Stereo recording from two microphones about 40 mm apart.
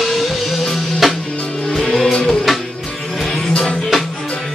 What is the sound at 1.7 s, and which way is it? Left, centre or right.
Music, centre.